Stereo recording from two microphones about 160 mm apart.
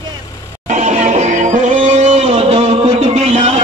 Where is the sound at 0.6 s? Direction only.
50° right (ahead or behind).